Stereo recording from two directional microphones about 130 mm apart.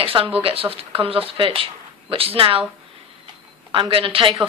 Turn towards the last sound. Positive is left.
turn(degrees=-40)  # may be behind; listen again after turning